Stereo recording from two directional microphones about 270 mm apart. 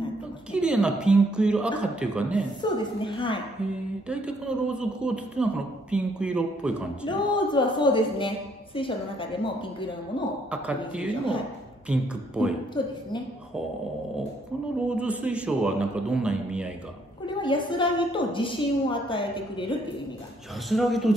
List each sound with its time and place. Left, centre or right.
0.5 s a man's voice: centre
2.6 s a woman's voice: centre
4.1 s a man's voice: centre
7.1 s a woman's voice: centre
10.5 s a man's voice: centre
12.8 s a woman's voice: centre
14.9 s a man's voice: centre
17.4 s a woman's voice: centre
20.6 s a man's voice: centre